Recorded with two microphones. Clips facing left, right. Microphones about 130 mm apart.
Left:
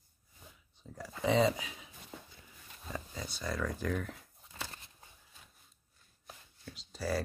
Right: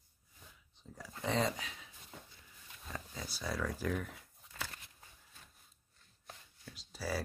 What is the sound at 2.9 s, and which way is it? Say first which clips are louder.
Speech: left 3 dB; 5° right (ahead or behind).